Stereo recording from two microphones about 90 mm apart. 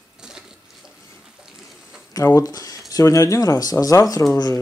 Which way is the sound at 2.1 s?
40° left (ahead or behind).